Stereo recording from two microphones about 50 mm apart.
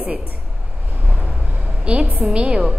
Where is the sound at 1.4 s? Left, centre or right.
Right.